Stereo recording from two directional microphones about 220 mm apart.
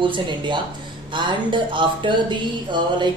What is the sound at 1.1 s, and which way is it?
Speech, 20° right (ahead or behind).